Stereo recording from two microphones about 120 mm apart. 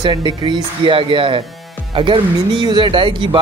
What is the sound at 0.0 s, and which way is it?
Speech, 40° right (ahead or behind).